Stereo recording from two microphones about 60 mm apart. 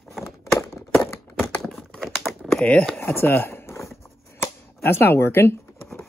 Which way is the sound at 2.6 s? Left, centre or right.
Centre.